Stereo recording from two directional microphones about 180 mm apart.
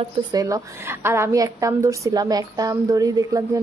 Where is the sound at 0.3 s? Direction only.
20° right (ahead or behind).